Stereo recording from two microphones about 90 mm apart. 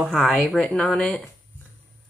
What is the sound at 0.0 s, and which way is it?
Speech, 5° left (ahead or behind).